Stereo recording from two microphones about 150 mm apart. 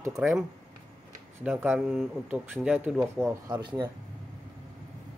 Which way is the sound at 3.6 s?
30° right (ahead or behind).